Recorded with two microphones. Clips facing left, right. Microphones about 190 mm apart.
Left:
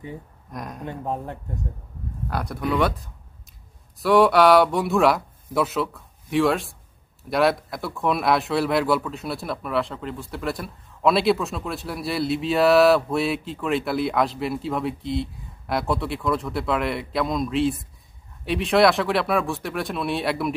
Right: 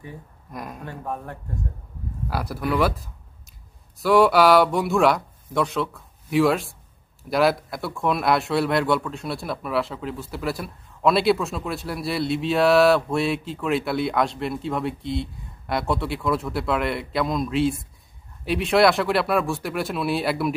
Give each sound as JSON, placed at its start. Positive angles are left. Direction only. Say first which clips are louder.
{"t": 0.5, "sound": "speech", "louder": "even", "side_deg": -5}
{"t": 0.8, "sound": "speech", "louder": "left 5 dB", "side_deg": 20}
{"t": 2.2, "sound": "speech", "louder": "even", "side_deg": -5}